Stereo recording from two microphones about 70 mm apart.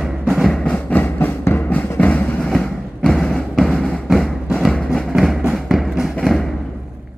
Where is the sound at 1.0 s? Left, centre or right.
Left.